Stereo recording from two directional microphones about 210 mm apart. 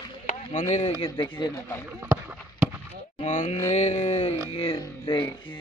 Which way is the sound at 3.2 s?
35° left (ahead or behind).